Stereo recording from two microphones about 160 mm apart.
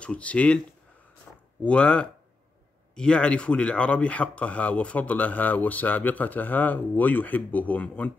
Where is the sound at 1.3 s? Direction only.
10° left (ahead or behind).